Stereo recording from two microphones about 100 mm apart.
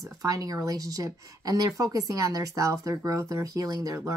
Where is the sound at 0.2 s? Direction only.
35° right (ahead or behind).